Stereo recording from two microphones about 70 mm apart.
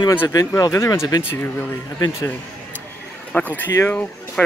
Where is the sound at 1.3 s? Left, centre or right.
Left.